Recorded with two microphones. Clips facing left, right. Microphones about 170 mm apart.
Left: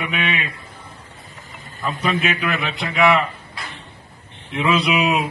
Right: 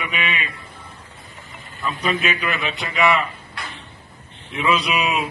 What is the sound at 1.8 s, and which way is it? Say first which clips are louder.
A man's voice: left 1 dB; 50° left (ahead or behind).